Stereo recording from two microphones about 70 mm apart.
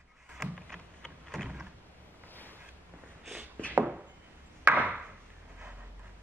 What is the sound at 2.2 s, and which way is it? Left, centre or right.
Boat, left.